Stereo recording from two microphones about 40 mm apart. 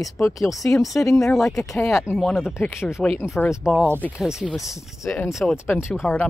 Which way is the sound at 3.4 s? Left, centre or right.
Left.